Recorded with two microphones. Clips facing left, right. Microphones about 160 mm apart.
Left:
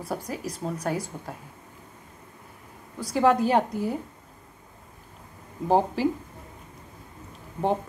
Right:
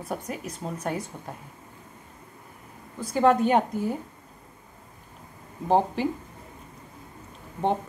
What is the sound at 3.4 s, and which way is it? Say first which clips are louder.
Speech: even; 5° left (ahead or behind).